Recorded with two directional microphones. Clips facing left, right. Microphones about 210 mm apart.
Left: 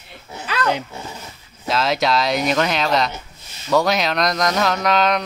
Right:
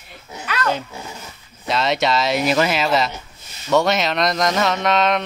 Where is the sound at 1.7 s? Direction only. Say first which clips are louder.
Even; centre (ahead or behind).